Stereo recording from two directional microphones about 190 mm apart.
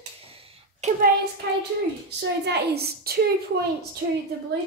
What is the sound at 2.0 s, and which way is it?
A woman's voice, 60° right (ahead or behind).